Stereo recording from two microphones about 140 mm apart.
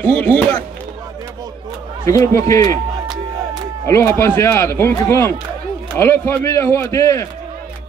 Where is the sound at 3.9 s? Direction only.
20° left (ahead or behind).